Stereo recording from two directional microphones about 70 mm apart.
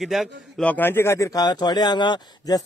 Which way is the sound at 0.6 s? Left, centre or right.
Left.